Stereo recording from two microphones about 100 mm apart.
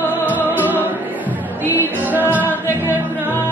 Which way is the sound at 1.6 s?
20° right (ahead or behind).